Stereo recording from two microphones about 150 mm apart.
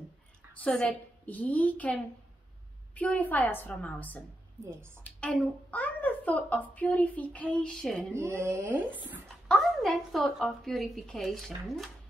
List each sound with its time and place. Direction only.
0.7 s a child's voice: 10° left (ahead or behind)
8.2 s speech: 15° right (ahead or behind)
9.5 s a woman's voice: centre (ahead or behind)